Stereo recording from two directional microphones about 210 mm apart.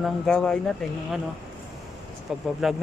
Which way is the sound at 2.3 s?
Centre (ahead or behind).